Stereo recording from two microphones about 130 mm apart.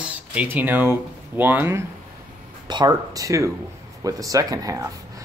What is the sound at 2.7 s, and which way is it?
Speech, 30° right (ahead or behind).